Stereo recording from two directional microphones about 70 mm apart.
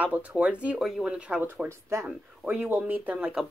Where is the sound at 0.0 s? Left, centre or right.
Right.